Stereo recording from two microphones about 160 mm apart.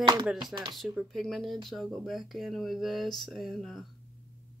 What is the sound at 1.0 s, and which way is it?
Speech, centre (ahead or behind).